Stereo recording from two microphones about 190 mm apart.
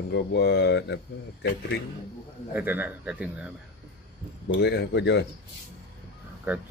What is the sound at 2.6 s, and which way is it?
Speech, 10° right (ahead or behind).